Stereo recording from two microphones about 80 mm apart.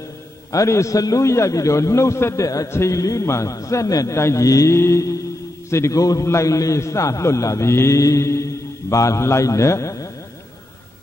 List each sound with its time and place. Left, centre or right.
0.5 s a man's voice: left